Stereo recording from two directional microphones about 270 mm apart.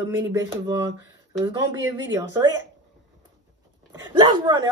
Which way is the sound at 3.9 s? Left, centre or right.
Centre.